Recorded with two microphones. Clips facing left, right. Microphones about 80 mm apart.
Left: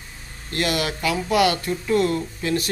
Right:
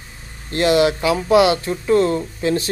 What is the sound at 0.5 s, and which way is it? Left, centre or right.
Speech, right.